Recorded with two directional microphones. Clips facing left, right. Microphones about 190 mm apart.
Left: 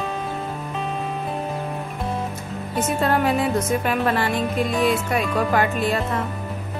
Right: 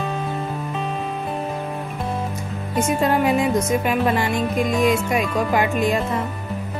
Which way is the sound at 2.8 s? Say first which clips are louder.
Right 2 dB; 10° right (ahead or behind).